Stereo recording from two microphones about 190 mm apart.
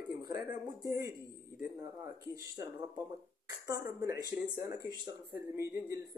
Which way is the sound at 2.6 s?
15° right (ahead or behind).